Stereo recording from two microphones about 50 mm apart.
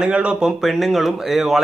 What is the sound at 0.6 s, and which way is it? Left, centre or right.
Speech, centre.